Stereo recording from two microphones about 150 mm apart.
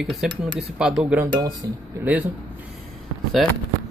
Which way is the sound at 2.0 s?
10° right (ahead or behind).